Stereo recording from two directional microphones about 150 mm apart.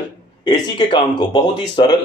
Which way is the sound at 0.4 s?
30° left (ahead or behind).